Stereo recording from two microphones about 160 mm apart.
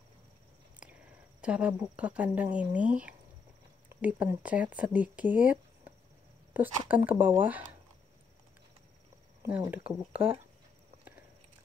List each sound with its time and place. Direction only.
1.4 s speech: 5° right (ahead or behind)
9.8 s speech: 35° right (ahead or behind)